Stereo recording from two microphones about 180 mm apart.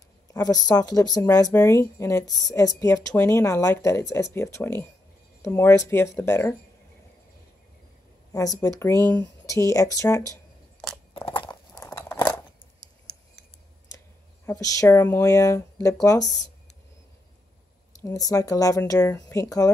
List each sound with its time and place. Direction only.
0.3 s speech: 20° left (ahead or behind)
8.3 s speech: 20° left (ahead or behind)
11.1 s a sound: 25° left (ahead or behind)
11.8 s crunch: 15° left (ahead or behind)
13.9 s speech: 20° left (ahead or behind)
18.0 s speech: 20° left (ahead or behind)